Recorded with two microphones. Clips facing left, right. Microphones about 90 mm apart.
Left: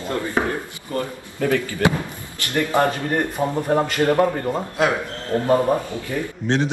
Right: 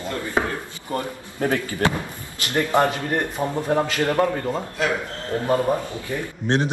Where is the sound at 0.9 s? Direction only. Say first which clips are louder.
Left 2 dB; 30° right (ahead or behind).